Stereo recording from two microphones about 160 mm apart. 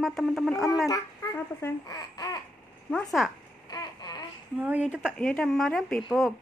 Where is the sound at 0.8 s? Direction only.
20° left (ahead or behind).